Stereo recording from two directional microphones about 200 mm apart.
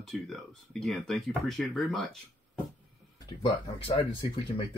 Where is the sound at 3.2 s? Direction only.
20° left (ahead or behind).